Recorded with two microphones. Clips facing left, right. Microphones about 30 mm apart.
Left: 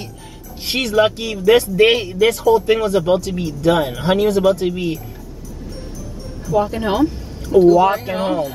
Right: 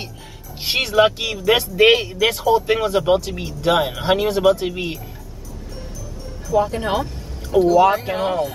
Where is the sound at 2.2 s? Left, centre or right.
Centre.